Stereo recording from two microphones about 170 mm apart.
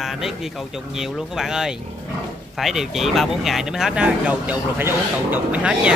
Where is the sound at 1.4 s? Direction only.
5° right (ahead or behind).